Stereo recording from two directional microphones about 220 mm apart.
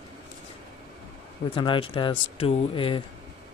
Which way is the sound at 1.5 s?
20° left (ahead or behind).